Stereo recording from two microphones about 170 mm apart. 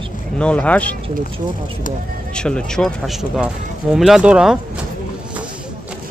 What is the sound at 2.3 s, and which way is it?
Speech, 5° left (ahead or behind).